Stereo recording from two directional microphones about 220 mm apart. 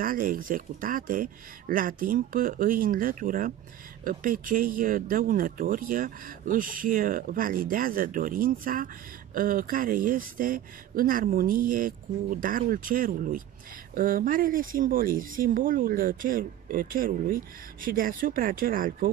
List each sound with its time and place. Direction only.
0.0 s speech: 40° right (ahead or behind)